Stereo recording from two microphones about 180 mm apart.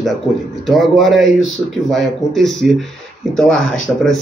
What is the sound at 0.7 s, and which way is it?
Speech, centre (ahead or behind).